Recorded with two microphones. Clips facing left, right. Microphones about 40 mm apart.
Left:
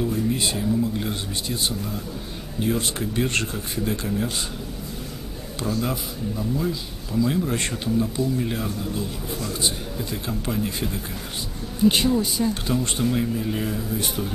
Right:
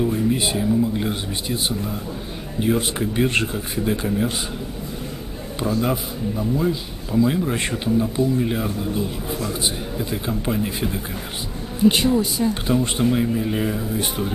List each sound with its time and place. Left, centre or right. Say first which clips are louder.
0.0 s speech: right 3 dB; centre
5.6 s speech: right 4 dB; centre
12.2 s speech: right 2 dB; centre
12.6 s speech: right 4 dB; centre